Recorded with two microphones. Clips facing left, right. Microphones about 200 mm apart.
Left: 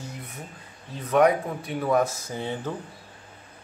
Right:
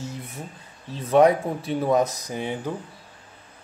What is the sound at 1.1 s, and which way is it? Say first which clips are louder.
Speech: right 3 dB; 30° right (ahead or behind).